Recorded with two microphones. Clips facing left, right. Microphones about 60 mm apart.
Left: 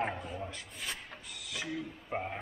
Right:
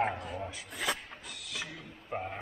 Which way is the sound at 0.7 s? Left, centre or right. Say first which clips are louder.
Right 7 dB; right.